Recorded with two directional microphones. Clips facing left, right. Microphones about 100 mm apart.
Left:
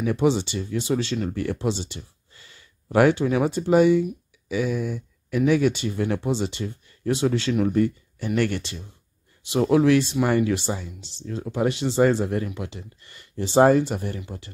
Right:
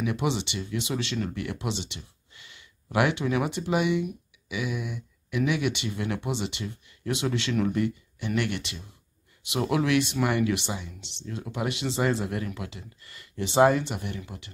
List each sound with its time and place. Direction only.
0.0 s speech: 35° left (ahead or behind)